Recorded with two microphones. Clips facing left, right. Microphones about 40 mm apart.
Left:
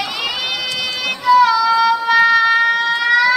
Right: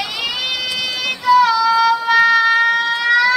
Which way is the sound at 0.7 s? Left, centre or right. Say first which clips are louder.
Even; centre.